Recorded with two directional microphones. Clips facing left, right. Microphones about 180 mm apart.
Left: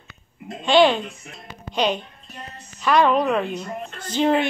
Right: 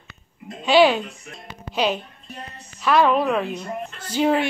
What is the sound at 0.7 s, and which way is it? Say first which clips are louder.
A woman's voice: even; 5° right (ahead or behind).